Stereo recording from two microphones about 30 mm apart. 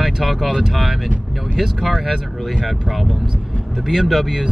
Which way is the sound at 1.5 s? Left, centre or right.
Centre.